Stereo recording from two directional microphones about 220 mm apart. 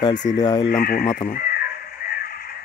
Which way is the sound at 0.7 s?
40° left (ahead or behind).